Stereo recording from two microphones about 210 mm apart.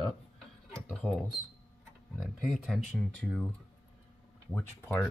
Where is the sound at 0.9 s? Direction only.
Centre (ahead or behind).